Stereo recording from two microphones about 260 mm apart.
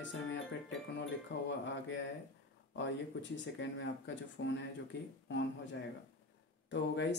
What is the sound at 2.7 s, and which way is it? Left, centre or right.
Speech, left.